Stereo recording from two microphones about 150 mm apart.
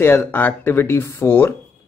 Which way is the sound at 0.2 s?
10° left (ahead or behind).